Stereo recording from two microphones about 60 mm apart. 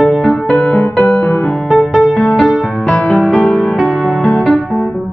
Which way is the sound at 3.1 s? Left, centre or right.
Centre.